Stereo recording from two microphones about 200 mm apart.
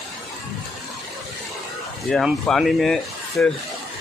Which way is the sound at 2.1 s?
Centre (ahead or behind).